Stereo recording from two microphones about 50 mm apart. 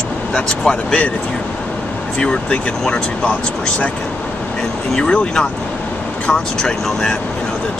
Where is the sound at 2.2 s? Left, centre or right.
Left.